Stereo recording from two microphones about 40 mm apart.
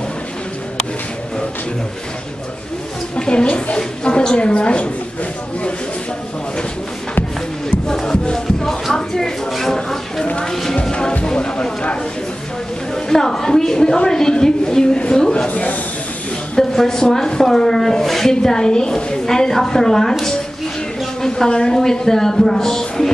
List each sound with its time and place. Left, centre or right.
3.2 s a sound: left
3.7 s a woman's voice: left
7.8 s music: centre
8.9 s a sound: centre
10.8 s music: centre
11.2 s speech: left
12.9 s speech: centre
15.3 s speech: left
16.5 s speech: centre